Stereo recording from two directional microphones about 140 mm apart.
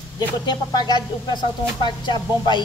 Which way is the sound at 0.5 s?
30° left (ahead or behind).